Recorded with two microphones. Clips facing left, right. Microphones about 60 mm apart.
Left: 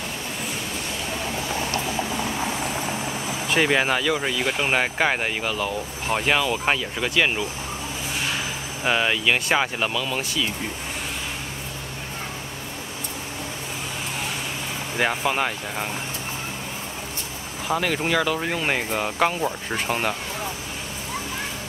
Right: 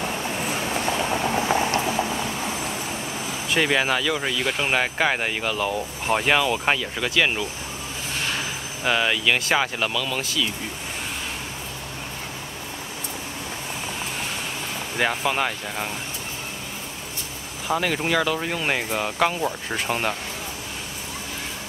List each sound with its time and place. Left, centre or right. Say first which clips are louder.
0.8 s vehicle: right 7 dB; right
1.6 s a sound: right 4 dB; right
3.5 s speech: left 1 dB; centre
8.8 s speech: even; centre
15.0 s speech: even; centre
17.6 s speech: even; centre